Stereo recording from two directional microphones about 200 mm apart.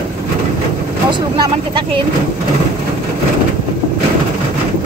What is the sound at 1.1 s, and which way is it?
Speech, 20° right (ahead or behind).